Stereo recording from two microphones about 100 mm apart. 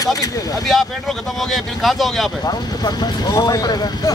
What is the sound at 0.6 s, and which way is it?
A man's voice, centre (ahead or behind).